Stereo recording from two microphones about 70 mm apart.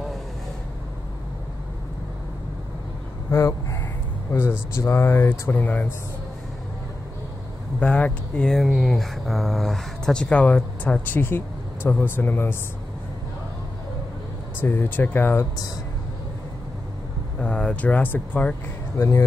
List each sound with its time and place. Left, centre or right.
3.3 s speech: left
4.3 s speech: left
5.5 s speech: left
7.8 s speech: centre
8.6 s speech: centre
10.3 s speech: centre
11.1 s speech: left
14.6 s speech: left
17.4 s speech: centre
18.9 s speech: left